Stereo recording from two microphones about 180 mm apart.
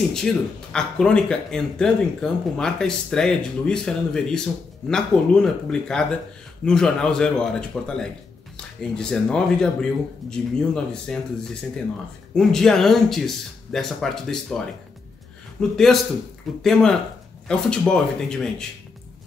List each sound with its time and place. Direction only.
0.1 s speech: 5° left (ahead or behind)
12.4 s speech: centre (ahead or behind)
15.7 s speech: centre (ahead or behind)